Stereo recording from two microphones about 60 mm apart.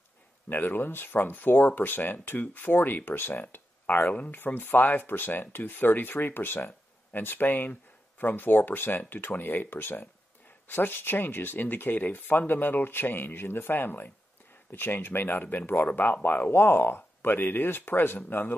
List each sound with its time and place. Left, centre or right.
0.5 s speech: left